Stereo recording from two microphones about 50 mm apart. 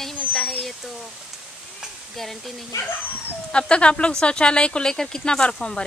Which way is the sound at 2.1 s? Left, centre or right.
Centre.